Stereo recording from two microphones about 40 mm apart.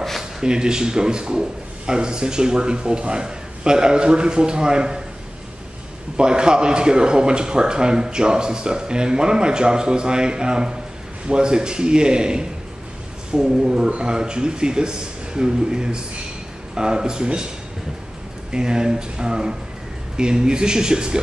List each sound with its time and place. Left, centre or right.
0.2 s a man's voice: centre
6.1 s a man's voice: right
18.5 s a man's voice: right